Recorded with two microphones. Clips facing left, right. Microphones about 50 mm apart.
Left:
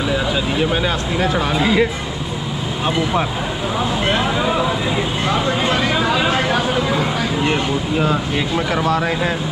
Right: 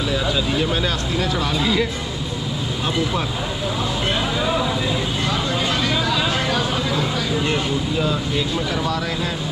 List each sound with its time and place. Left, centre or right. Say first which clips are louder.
0.1 s speech: even; left
5.3 s vehicle: left 6 dB; left